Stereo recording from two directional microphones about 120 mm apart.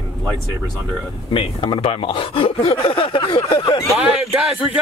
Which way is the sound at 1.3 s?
45° left (ahead or behind).